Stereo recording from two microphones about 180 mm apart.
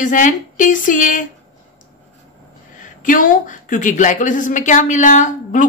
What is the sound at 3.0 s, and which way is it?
A woman's voice, 45° left (ahead or behind).